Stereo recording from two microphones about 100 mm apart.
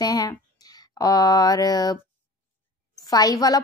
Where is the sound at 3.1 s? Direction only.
40° left (ahead or behind).